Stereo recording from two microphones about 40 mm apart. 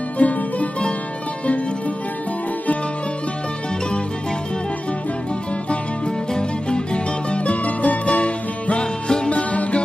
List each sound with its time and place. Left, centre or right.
0.2 s music: left
6.3 s music: left
9.3 s music: left